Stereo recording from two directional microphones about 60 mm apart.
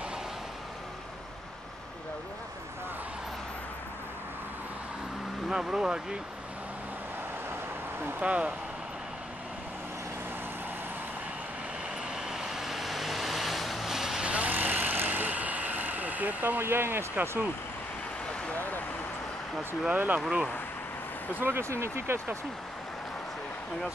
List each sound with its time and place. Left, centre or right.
5.5 s speech: centre
8.2 s speech: centre
12.2 s vehicle: centre
14.2 s vehicle: right
18.5 s vehicle: left
19.9 s speech: right
21.4 s speech: right
21.6 s speech: right